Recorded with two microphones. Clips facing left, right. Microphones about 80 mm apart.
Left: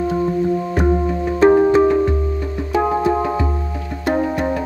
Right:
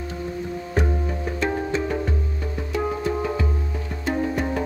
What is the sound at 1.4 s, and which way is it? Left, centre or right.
Music, left.